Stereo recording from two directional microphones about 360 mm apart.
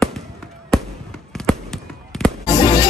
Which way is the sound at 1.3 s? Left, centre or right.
Centre.